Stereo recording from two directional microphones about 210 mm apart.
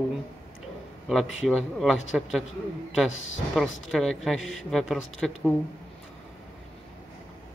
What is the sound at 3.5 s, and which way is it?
Speech, centre (ahead or behind).